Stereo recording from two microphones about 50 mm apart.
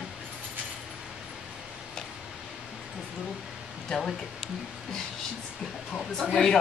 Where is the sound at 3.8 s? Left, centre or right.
Centre.